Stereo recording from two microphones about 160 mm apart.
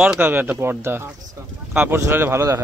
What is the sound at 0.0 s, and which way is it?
A man's voice, 10° right (ahead or behind).